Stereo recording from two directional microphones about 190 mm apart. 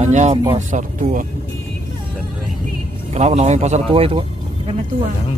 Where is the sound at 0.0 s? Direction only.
40° right (ahead or behind).